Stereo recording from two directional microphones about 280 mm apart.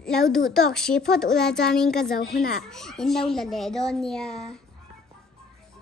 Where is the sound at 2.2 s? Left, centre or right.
Left.